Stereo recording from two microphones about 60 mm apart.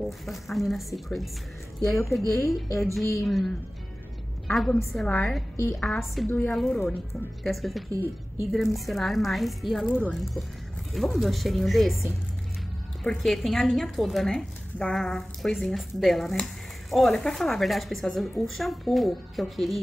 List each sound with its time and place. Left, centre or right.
0.0 s a woman's voice: centre
5.0 s a woman's voice: centre
5.8 s a woman's voice: centre
10.9 s a woman's voice: centre